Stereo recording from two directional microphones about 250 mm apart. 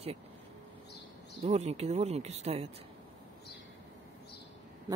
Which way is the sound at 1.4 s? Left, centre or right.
Right.